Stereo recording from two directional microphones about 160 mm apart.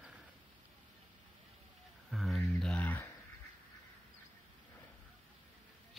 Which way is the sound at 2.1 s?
Centre (ahead or behind).